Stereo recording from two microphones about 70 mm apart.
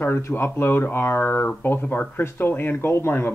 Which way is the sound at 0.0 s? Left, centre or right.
Left.